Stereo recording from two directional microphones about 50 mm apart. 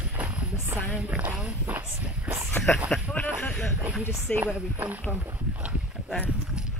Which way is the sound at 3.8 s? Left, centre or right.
Right.